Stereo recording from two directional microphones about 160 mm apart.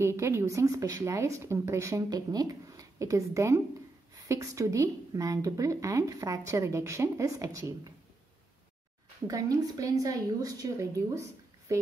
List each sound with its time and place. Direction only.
0.0 s a woman's voice: 15° right (ahead or behind)
9.3 s a woman's voice: 20° right (ahead or behind)